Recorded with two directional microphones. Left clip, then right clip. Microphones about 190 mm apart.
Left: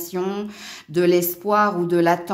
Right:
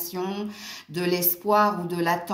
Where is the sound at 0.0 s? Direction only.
45° left (ahead or behind).